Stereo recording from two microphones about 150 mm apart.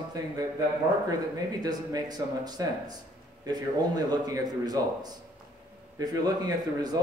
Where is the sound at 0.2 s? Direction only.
25° right (ahead or behind).